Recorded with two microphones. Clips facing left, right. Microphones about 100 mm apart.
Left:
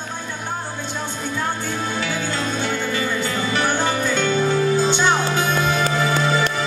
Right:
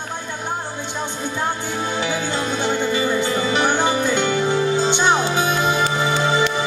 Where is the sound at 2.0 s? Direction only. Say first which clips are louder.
Right 2 dB; 20° right (ahead or behind).